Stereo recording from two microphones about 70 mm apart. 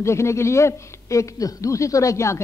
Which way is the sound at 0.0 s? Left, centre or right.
Left.